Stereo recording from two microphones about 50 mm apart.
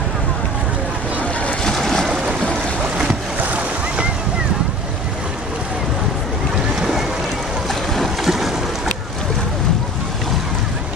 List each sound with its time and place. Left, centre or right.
1.6 s boat: centre
3.3 s boat: right
6.8 s boat: centre